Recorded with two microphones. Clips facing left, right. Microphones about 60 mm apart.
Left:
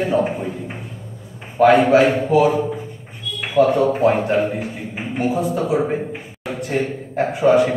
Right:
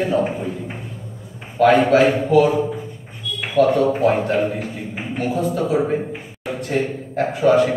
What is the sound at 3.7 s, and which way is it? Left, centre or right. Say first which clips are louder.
Speech: left 1 dB; centre.